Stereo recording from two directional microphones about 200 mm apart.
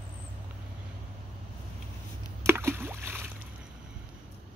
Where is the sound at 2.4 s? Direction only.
10° right (ahead or behind).